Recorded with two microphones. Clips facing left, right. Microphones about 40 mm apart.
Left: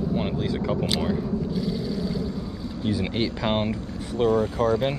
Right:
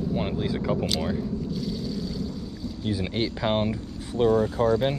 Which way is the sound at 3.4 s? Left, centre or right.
Left.